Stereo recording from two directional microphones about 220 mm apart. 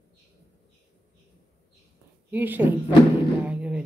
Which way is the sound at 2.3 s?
5° right (ahead or behind).